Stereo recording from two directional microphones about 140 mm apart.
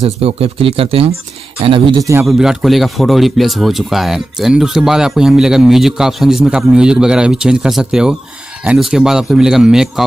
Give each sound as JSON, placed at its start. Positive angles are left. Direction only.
{"t": 0.0, "sound": "speech", "side_deg": -45}
{"t": 2.0, "sound": "a man's voice", "side_deg": -20}
{"t": 2.2, "sound": "a man's voice", "side_deg": -5}